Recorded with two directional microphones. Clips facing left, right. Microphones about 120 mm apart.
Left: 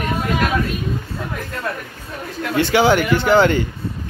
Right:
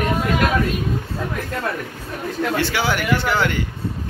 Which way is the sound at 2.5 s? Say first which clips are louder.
Left 10 dB; 20° left (ahead or behind).